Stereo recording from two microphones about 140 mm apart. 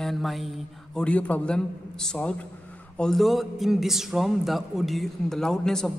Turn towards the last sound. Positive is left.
turn(degrees=5)  # may be behind; listen again after turning